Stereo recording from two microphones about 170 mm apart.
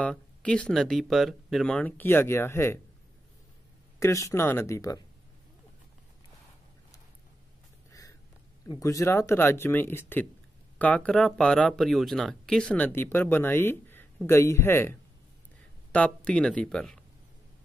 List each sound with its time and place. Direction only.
0.0 s speech: 5° left (ahead or behind)
4.0 s speech: 20° left (ahead or behind)
7.9 s a sound: 20° left (ahead or behind)
8.6 s speech: 20° left (ahead or behind); by 17.0 s 5° left (ahead or behind)